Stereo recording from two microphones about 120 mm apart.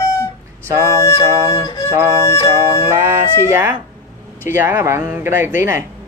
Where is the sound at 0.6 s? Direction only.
25° right (ahead or behind).